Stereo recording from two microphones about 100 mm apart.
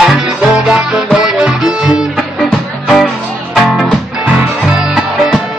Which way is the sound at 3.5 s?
Centre (ahead or behind).